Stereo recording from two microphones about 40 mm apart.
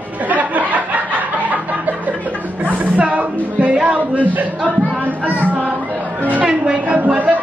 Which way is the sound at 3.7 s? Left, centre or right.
Right.